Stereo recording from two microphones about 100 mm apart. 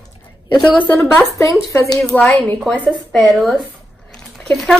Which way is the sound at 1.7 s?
30° left (ahead or behind).